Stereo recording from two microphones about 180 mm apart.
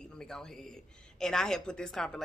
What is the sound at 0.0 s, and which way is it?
Speech, 5° left (ahead or behind).